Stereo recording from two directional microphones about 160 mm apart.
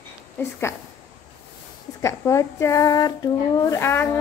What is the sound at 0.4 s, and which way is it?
Speech, 15° left (ahead or behind).